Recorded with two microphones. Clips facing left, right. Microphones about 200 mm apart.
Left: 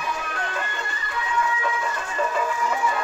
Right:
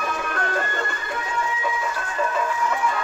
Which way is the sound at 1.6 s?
5° right (ahead or behind).